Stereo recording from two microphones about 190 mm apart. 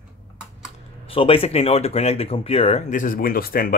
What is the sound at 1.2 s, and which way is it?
Speech, 30° left (ahead or behind).